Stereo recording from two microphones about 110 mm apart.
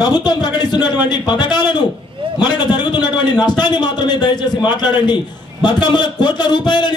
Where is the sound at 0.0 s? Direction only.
40° left (ahead or behind).